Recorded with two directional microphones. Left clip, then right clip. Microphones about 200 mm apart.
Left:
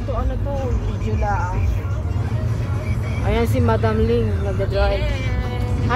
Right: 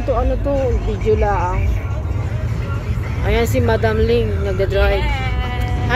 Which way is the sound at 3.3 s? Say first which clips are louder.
Right 3 dB; centre (ahead or behind).